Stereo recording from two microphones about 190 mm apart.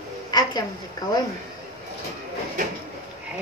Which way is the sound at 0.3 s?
20° left (ahead or behind).